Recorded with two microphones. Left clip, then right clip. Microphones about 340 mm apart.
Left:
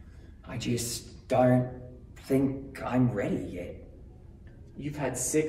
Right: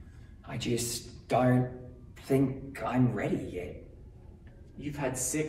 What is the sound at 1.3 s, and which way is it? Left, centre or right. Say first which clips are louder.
A man's voice: left 3 dB; centre.